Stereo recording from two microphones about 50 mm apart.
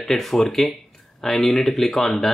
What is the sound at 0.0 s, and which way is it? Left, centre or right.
Speech, centre.